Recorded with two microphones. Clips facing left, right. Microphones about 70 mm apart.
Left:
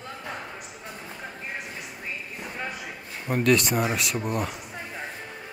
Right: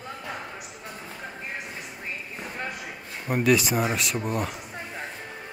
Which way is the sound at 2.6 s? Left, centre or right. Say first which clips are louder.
Even; centre.